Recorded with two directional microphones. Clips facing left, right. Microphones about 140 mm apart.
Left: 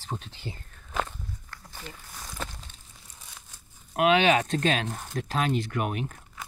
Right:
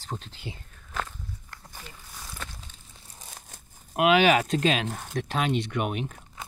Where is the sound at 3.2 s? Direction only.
40° right (ahead or behind).